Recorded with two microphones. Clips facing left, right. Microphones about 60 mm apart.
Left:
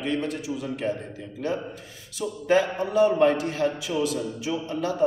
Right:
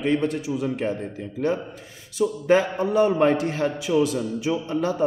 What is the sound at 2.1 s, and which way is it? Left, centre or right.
A man's voice, right.